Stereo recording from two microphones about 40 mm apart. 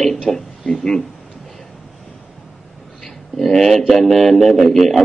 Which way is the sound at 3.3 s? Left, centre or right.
Centre.